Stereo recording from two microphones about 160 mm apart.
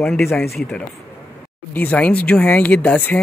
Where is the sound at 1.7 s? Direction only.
10° left (ahead or behind).